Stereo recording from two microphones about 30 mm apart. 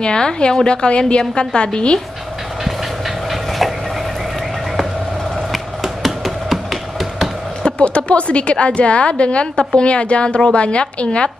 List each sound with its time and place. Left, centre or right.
0.0 s a woman's voice: left
0.8 s a woman's voice: left
3.3 s train: centre
5.8 s a sound: centre
7.6 s a woman's voice: left